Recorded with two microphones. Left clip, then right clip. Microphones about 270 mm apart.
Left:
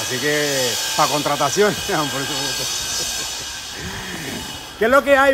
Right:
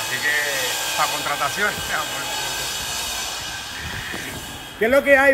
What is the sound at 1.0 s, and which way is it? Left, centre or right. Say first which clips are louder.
Speech: left 5 dB; left.